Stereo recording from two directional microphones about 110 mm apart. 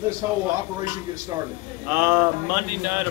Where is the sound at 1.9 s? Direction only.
15° right (ahead or behind).